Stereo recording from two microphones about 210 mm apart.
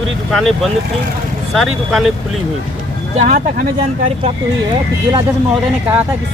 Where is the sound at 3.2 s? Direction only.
35° right (ahead or behind).